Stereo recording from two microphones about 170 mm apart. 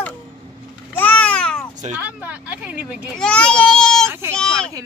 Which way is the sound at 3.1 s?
5° left (ahead or behind).